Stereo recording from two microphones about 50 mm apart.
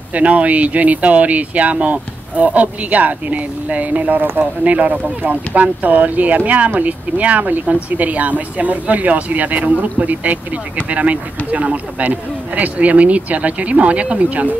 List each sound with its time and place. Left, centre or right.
0.1 s speech: right